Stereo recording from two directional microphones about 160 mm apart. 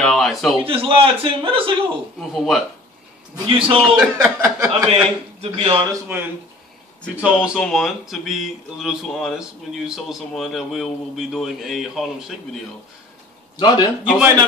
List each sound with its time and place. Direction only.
0.0 s a sound: centre (ahead or behind)
0.6 s a man's voice: 35° right (ahead or behind)
2.1 s speech: centre (ahead or behind)
3.4 s a man's voice: 35° right (ahead or behind)
3.8 s speech: 5° right (ahead or behind)
4.4 s speech: 20° right (ahead or behind)
4.9 s speech: 30° right (ahead or behind)
7.2 s speech: 5° right (ahead or behind)
13.6 s a man's voice: 25° left (ahead or behind)
14.0 s speech: 5° right (ahead or behind)